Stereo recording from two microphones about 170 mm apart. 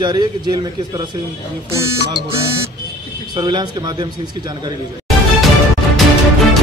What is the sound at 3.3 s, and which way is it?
A man's voice, 25° right (ahead or behind).